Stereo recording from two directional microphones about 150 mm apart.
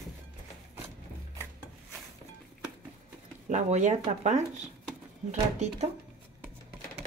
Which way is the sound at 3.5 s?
50° right (ahead or behind).